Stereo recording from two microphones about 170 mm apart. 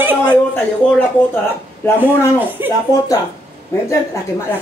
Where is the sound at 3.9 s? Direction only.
15° left (ahead or behind).